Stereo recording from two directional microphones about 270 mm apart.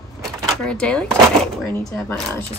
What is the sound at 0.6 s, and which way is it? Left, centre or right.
A woman's voice, centre.